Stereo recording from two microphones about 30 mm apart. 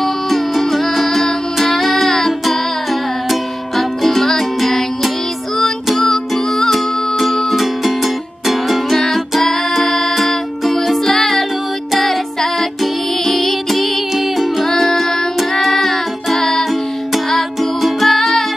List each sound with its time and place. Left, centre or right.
0.0 s music: centre
6.7 s music: centre
8.9 s music: centre
14.6 s music: centre
17.6 s music: centre